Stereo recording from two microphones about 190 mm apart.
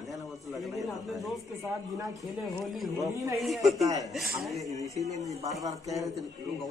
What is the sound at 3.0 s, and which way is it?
Speech, 15° right (ahead or behind).